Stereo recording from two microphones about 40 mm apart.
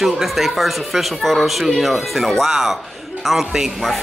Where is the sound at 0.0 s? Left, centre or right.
Centre.